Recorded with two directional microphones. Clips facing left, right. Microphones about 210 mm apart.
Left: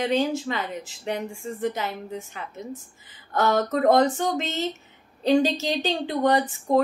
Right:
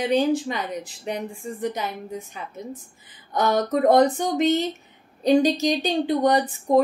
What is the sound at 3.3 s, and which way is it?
Speech, 15° right (ahead or behind).